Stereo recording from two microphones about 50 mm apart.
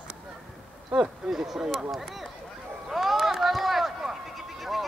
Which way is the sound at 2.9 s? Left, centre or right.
Centre.